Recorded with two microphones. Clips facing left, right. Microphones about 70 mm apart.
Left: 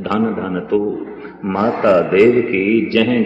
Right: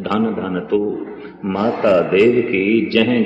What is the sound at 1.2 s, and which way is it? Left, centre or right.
A man's voice, left.